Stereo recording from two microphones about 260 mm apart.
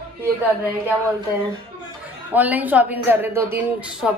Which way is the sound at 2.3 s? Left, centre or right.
Centre.